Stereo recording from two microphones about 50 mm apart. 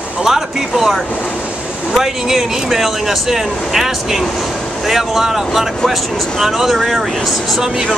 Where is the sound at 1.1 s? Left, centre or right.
Left.